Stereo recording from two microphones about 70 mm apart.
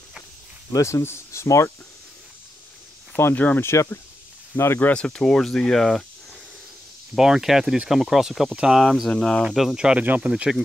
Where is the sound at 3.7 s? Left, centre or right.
Left.